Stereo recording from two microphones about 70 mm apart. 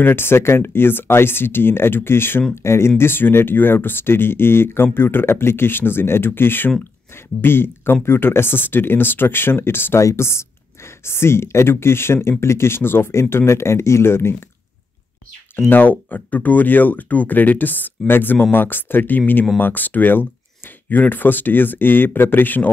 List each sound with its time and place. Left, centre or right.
0.0 s speech: left
15.7 s speech: left